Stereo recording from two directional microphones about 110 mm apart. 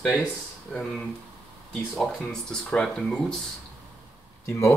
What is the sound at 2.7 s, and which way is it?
Speech, 5° left (ahead or behind).